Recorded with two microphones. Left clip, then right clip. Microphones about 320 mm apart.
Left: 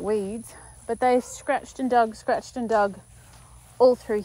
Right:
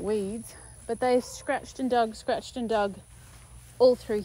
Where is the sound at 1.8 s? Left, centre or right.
Centre.